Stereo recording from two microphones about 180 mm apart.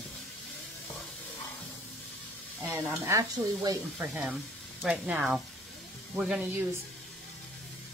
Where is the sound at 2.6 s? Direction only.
10° right (ahead or behind).